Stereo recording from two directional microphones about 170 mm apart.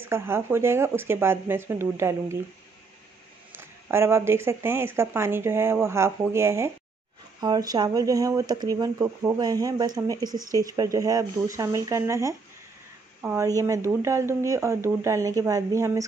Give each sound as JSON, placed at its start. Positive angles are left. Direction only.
{"t": 0.0, "sound": "speech", "side_deg": -15}
{"t": 3.5, "sound": "speech", "side_deg": -15}